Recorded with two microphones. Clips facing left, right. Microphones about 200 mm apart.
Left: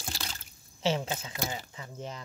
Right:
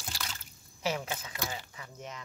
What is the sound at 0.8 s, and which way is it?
Speech, 25° left (ahead or behind).